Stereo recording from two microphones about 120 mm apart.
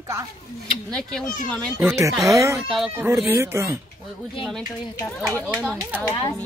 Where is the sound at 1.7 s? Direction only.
25° right (ahead or behind).